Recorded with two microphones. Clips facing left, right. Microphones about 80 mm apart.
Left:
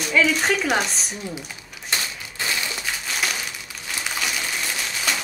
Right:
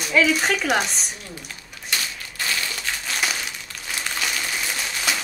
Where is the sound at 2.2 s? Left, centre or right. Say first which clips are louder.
Even; centre.